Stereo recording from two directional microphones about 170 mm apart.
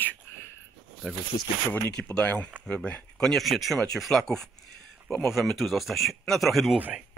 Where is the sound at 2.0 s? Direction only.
10° left (ahead or behind); by 7.0 s 10° right (ahead or behind).